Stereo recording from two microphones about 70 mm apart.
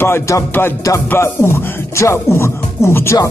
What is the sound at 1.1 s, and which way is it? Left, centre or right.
Music, left.